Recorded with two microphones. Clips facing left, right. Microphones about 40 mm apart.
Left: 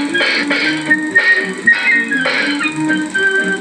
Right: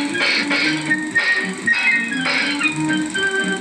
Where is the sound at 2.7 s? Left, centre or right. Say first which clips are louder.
Left 4 dB; centre.